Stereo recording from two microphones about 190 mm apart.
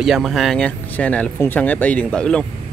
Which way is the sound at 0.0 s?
Centre (ahead or behind).